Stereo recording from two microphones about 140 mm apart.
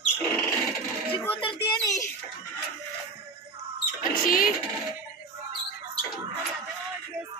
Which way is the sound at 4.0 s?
90° left.